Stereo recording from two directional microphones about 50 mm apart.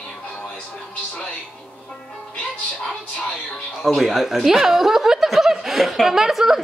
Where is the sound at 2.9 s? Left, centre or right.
Centre.